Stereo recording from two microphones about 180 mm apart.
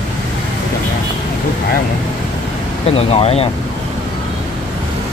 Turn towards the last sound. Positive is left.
turn(degrees=35)  # may be behind; listen again after turning